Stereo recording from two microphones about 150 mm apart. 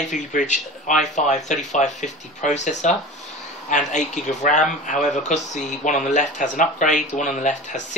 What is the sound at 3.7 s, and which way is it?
Speech, 55° left (ahead or behind).